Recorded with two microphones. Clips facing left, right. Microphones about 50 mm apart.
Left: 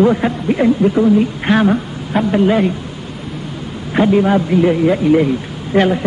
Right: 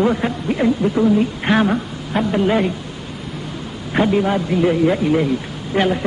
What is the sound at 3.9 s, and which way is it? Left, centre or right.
A man's voice, centre.